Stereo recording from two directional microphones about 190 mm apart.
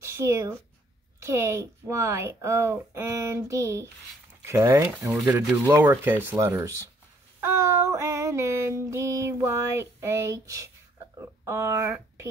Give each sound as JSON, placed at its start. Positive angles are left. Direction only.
{"t": 0.0, "sound": "speech", "side_deg": -15}
{"t": 1.2, "sound": "child singing", "side_deg": -15}
{"t": 11.1, "sound": "speech", "side_deg": -15}